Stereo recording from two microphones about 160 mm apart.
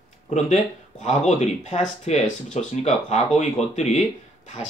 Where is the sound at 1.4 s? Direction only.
45° left (ahead or behind).